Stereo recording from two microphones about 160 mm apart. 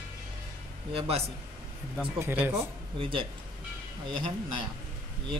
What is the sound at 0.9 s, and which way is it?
Speech, 40° right (ahead or behind).